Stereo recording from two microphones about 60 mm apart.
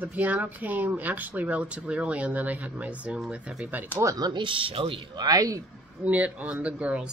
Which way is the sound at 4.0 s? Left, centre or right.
Right.